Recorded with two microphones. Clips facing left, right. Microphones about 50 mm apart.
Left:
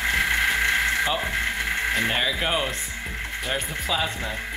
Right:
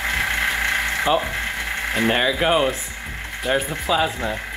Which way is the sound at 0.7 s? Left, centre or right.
Right.